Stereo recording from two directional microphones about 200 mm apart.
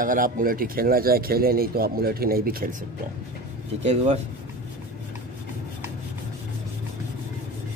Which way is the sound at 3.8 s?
35° right (ahead or behind).